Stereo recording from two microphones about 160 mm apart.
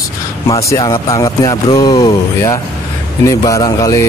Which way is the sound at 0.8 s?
20° left (ahead or behind).